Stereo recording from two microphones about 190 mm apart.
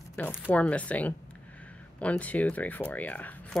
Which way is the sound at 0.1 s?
10° left (ahead or behind).